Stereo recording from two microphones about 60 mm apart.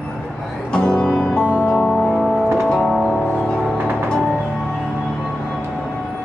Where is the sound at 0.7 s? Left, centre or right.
Centre.